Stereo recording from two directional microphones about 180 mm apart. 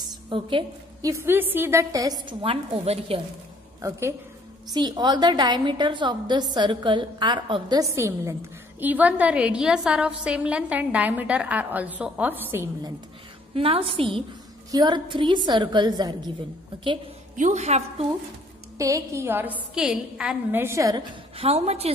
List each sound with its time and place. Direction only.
0.3 s a woman's voice: 25° right (ahead or behind)
1.1 s a woman's voice: 10° right (ahead or behind); by 3.2 s 35° right (ahead or behind)
4.6 s a woman's voice: 25° right (ahead or behind)
7.9 s a woman's voice: 15° right (ahead or behind)
13.6 s a woman's voice: 30° right (ahead or behind)
17.4 s a woman's voice: 40° right (ahead or behind)
18.8 s a woman's voice: 20° right (ahead or behind)
21.4 s a woman's voice: 35° right (ahead or behind)